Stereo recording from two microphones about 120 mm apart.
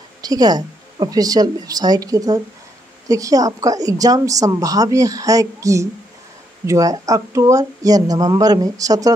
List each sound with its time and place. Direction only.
0.2 s a woman's voice: 35° right (ahead or behind)